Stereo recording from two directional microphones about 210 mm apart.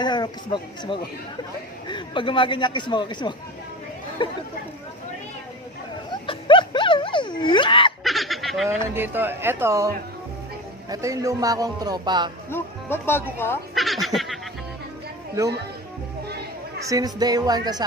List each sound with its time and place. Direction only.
0.0 s speech: 20° left (ahead or behind)
6.2 s a sound: 25° left (ahead or behind)
8.0 s speech: centre (ahead or behind)
10.9 s speech: 15° right (ahead or behind)
12.4 s speech: 10° left (ahead or behind)
13.7 s a sound: centre (ahead or behind)
16.9 s a woman's voice: 20° right (ahead or behind)